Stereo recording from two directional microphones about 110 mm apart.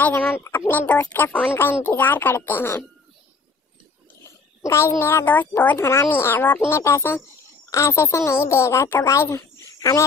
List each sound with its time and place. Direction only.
0.0 s a child's voice: 20° left (ahead or behind)
4.6 s a child's voice: 25° left (ahead or behind)